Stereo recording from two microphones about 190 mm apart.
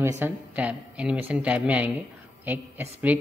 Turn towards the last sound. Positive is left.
turn(degrees=-10)  # may be behind; listen again after turning